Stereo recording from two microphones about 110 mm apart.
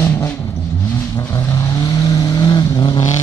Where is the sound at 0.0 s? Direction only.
25° left (ahead or behind).